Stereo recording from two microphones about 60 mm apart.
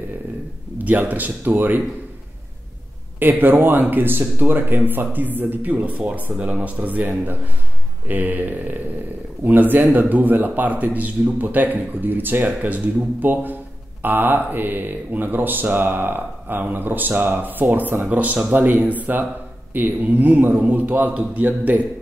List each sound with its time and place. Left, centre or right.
0.7 s a man's voice: right
3.2 s a man's voice: right